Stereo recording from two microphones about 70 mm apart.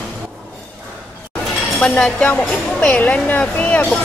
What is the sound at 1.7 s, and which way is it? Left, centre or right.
Speech, centre.